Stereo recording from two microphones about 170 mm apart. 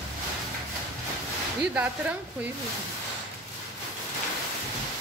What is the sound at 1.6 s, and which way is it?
Speech, 5° right (ahead or behind).